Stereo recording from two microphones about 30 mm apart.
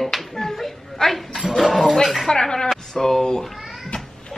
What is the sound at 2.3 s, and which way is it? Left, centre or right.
Speech, left.